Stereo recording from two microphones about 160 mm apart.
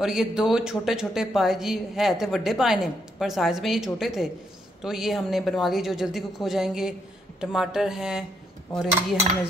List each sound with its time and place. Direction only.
0.0 s speech: 5° right (ahead or behind)